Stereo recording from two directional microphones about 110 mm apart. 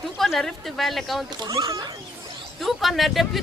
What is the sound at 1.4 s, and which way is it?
Speech, 35° right (ahead or behind).